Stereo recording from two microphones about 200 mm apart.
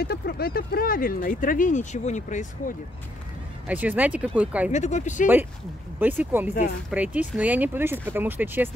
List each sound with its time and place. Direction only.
0.0 s speech: 50° left (ahead or behind)
3.6 s speech: 10° right (ahead or behind)
4.7 s speech: 35° left (ahead or behind)
5.9 s speech: 10° right (ahead or behind)